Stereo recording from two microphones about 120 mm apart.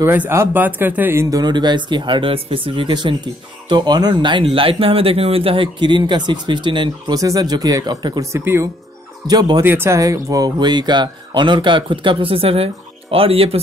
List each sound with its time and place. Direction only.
0.0 s speech: 20° right (ahead or behind)
1.3 s speech: 35° right (ahead or behind)
7.2 s speech: 30° right (ahead or behind)
8.3 s speech: 20° right (ahead or behind)
9.3 s speech: 35° right (ahead or behind)
9.7 s speech: 20° right (ahead or behind); by 13.6 s 55° right (ahead or behind)